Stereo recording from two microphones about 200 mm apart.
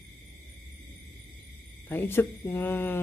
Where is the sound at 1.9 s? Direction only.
10° left (ahead or behind).